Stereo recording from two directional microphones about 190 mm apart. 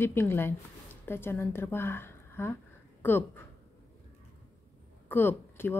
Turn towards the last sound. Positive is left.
turn(degrees=10)  # may be behind; listen again after turning